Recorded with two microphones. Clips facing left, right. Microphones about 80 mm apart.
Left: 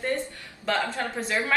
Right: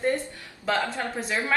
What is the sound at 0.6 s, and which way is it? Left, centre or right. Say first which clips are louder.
Speech: even; centre.